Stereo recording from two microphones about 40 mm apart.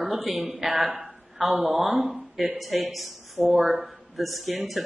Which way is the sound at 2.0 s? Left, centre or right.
Centre.